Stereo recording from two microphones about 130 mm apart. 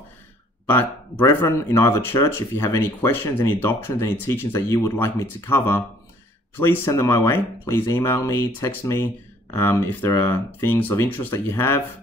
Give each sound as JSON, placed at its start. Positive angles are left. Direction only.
{"t": 0.7, "sound": "speech", "side_deg": 15}